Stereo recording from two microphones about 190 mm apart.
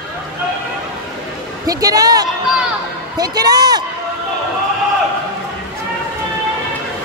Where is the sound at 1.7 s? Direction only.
20° right (ahead or behind).